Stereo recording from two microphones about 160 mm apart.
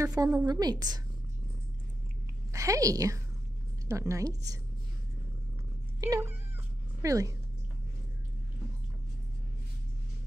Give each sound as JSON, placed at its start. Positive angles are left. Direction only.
{"t": 0.0, "sound": "a woman's voice", "side_deg": -20}
{"t": 2.5, "sound": "a woman's voice", "side_deg": -20}
{"t": 5.9, "sound": "cat", "side_deg": -20}
{"t": 7.0, "sound": "speech", "side_deg": -20}